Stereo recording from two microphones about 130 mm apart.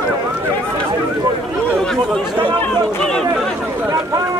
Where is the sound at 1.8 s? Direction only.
Centre (ahead or behind).